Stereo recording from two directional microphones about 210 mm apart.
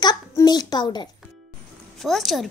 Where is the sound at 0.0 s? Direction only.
20° left (ahead or behind).